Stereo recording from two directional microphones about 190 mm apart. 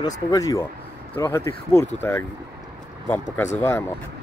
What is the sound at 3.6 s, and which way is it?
Speech, 10° left (ahead or behind).